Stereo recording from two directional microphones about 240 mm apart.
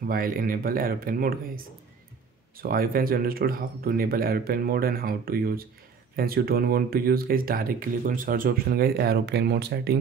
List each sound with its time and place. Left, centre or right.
0.0 s speech: right